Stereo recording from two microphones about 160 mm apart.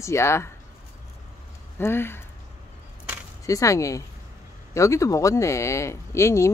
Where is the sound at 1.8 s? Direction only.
15° left (ahead or behind).